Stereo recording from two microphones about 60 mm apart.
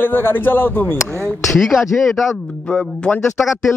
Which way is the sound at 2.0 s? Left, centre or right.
Centre.